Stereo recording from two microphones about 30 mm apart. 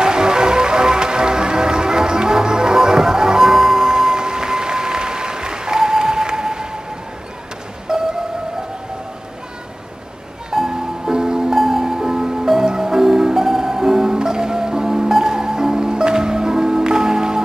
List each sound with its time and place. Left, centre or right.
0.0 s music: right
7.9 s music: right
10.5 s music: centre
11.5 s music: centre